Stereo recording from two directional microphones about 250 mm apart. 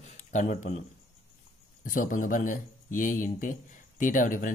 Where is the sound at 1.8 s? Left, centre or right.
Left.